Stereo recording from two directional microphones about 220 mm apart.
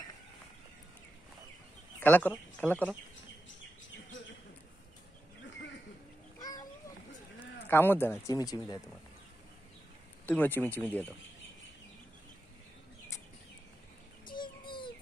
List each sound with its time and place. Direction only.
2.0 s speech: 10° left (ahead or behind)
6.4 s a sound: 15° left (ahead or behind)
7.6 s speech: 10° left (ahead or behind)
10.2 s speech: 10° left (ahead or behind)
14.2 s child singing: 20° left (ahead or behind)